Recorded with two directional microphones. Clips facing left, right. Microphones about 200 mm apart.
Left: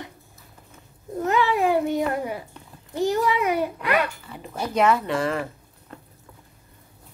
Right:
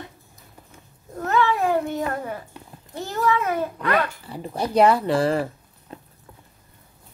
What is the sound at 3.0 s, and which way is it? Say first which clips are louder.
Babbling: left 2 dB; 15° left (ahead or behind).